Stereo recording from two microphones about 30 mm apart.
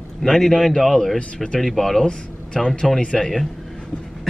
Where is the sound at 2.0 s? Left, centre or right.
Left.